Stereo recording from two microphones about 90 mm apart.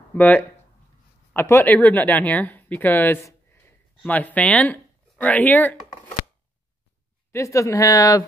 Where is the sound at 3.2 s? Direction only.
25° left (ahead or behind).